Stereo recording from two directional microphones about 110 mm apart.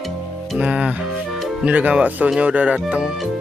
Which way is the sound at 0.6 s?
10° right (ahead or behind).